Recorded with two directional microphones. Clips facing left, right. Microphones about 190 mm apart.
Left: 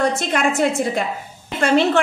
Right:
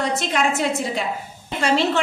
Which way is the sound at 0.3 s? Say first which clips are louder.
Left 3 dB; 50° left (ahead or behind).